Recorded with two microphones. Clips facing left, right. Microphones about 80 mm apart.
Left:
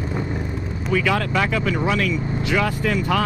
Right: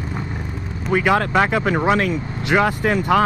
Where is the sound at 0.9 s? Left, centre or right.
Right.